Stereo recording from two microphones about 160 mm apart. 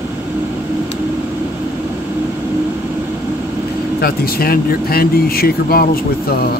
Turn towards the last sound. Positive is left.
turn(degrees=75)  # may be behind; listen again after turning